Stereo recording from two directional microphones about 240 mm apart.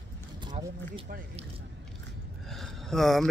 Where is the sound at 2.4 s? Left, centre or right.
Centre.